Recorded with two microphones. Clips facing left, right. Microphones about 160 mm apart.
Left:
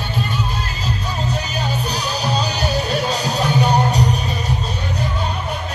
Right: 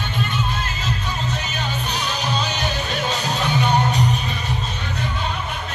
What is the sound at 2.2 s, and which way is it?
Music, 35° left (ahead or behind).